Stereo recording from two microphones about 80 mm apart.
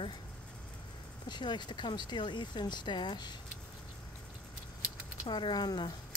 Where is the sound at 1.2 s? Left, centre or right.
Left.